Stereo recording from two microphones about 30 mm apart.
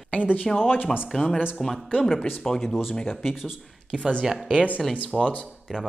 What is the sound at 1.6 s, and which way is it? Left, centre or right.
Speech, centre.